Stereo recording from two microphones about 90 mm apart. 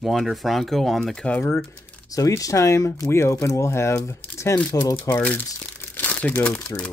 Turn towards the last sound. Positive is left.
turn(degrees=10)  # may be behind; listen again after turning